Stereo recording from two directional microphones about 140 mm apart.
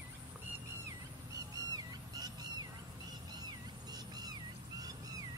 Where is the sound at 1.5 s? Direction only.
30° right (ahead or behind).